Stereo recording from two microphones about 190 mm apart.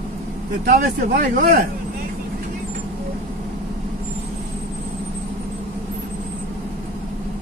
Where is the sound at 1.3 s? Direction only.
50° right (ahead or behind).